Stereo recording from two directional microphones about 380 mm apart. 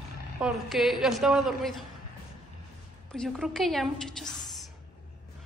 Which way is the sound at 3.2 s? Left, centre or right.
Centre.